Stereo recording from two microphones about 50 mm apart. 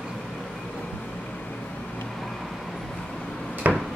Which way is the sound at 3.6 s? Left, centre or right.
Right.